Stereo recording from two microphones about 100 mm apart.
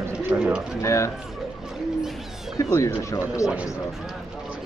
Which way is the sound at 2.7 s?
30° left (ahead or behind).